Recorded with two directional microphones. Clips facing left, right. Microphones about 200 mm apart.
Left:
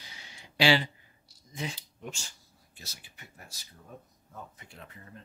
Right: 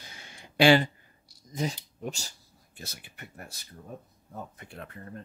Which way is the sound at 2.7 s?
55° right (ahead or behind).